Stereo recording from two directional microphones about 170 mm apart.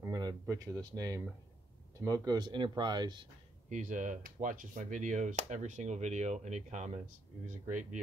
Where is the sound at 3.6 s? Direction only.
50° right (ahead or behind).